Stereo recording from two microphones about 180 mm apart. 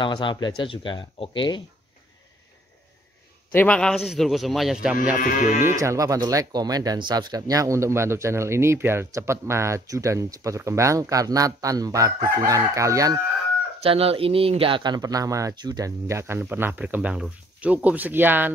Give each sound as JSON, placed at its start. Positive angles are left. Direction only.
{"t": 0.0, "sound": "speech", "side_deg": 25}
{"t": 3.5, "sound": "a man's voice", "side_deg": 5}
{"t": 5.1, "sound": "livestock", "side_deg": 45}
{"t": 5.8, "sound": "speech", "side_deg": -20}
{"t": 13.8, "sound": "speech", "side_deg": -30}